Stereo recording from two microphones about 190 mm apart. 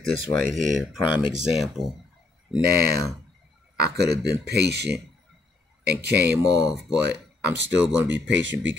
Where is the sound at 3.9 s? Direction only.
60° right (ahead or behind).